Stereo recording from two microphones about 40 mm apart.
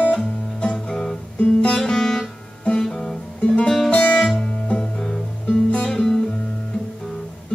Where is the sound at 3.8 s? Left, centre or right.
Left.